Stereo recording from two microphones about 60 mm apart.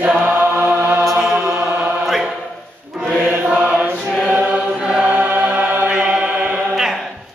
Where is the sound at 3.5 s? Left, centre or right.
Centre.